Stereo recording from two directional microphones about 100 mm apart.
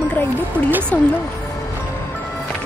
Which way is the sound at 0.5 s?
20° right (ahead or behind).